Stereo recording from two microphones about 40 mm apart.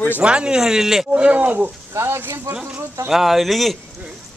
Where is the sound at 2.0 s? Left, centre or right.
Right.